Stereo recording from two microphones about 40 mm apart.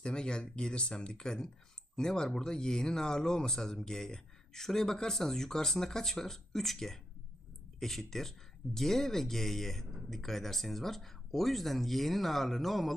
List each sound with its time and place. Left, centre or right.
0.0 s speech: left; by 12.9 s centre